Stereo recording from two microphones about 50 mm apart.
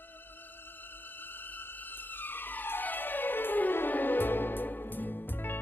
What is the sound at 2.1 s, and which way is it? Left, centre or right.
Music, left.